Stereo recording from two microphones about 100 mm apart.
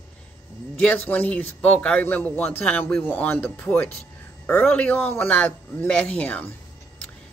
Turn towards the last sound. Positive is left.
turn(degrees=15)  # may be behind; listen again after turning